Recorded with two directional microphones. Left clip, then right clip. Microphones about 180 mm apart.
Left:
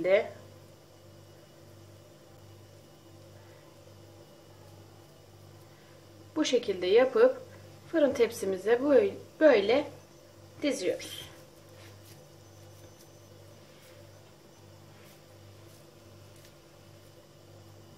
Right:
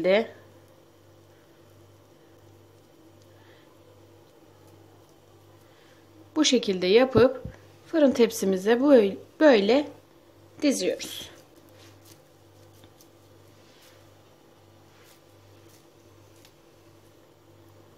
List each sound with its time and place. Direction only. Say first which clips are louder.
6.3 s a woman's voice: right 5 dB; 60° right (ahead or behind)